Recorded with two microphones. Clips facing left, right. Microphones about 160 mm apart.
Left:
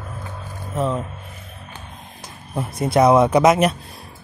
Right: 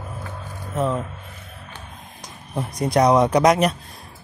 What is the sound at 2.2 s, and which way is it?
Speech, 5° left (ahead or behind).